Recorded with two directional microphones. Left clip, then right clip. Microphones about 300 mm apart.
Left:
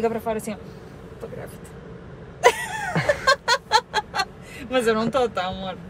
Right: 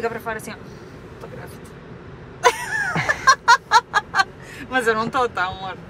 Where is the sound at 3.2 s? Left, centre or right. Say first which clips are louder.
Right 8 dB; centre.